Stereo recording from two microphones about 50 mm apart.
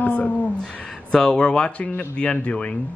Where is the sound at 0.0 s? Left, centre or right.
Left.